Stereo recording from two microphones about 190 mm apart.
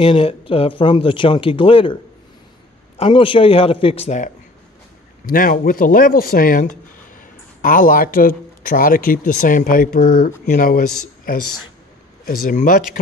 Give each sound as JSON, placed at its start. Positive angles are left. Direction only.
{"t": 0.0, "sound": "speech", "side_deg": 30}
{"t": 3.0, "sound": "speech", "side_deg": 30}
{"t": 5.2, "sound": "speech", "side_deg": 45}